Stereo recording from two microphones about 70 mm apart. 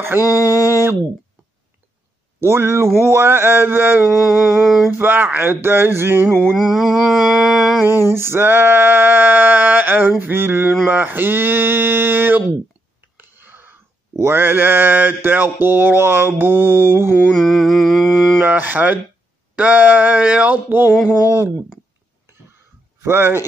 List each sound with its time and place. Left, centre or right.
0.2 s a sound: left
2.4 s mantra: right
4.5 s mantra: centre
4.9 s mantra: right
6.5 s mantra: centre
8.1 s male singing: right
13.2 s a sound: right
14.1 s mantra: right
17.3 s mantra: centre
18.4 s male singing: right
21.3 s male singing: right
23.0 s mantra: right